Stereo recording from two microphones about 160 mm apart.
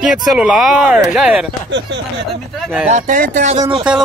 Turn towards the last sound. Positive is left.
turn(degrees=-30)  # may be behind; listen again after turning